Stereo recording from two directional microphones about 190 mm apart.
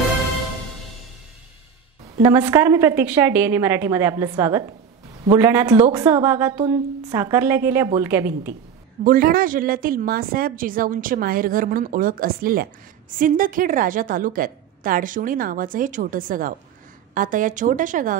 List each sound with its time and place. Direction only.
2.2 s a woman's voice: 15° right (ahead or behind)
9.0 s a woman's voice: 50° right (ahead or behind)